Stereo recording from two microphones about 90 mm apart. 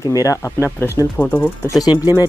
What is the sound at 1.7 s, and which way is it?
Speech, 40° left (ahead or behind).